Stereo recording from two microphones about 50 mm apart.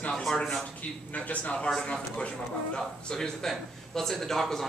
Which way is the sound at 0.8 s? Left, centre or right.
Left.